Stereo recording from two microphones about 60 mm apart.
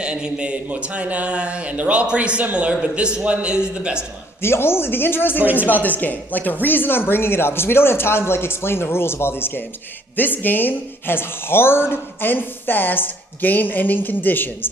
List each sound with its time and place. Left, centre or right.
0.0 s a man's voice: centre
4.4 s speech: left
5.4 s a man's voice: right
5.7 s speech: left